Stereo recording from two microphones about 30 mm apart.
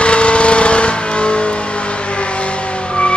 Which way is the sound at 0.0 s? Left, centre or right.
Left.